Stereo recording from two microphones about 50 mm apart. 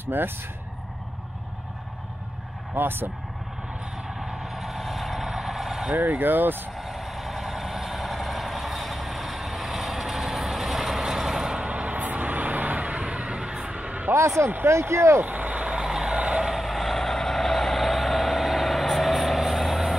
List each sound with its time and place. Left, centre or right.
0.0 s speech: right
2.7 s speech: right
4.3 s vehicle: centre
5.9 s speech: right
6.8 s vehicle: centre
11.5 s vehicle: right
14.4 s speech: right
15.2 s vehicle: right
15.7 s vehicle: centre
16.4 s vehicle: centre